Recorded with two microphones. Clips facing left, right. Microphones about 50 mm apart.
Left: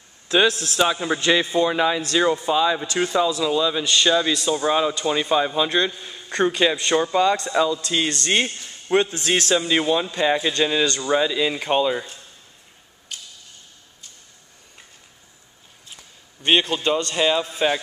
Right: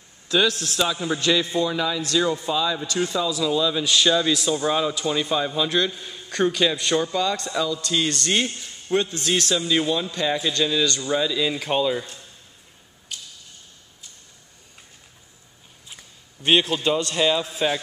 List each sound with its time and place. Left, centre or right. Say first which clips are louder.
0.3 s a man's voice: left 3 dB; left
3.4 s a man's voice: left 1 dB; centre
3.8 s a man's voice: even; centre
4.1 s a man's voice: left 1 dB; centre; by 7.7 s left
7.7 s a man's voice: left 1 dB; centre
13.1 s a sound: even; left
16.4 s a man's voice: even; centre